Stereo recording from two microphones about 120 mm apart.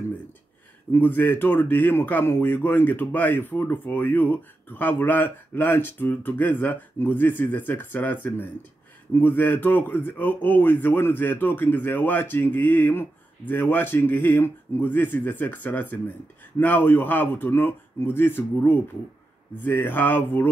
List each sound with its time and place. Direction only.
0.9 s speech: 15° left (ahead or behind)